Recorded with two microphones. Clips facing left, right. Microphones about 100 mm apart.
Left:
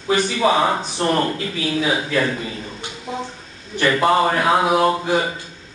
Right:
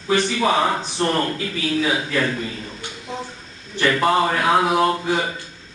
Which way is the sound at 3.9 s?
15° left (ahead or behind).